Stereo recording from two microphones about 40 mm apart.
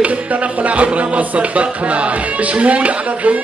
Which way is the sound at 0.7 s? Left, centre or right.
Right.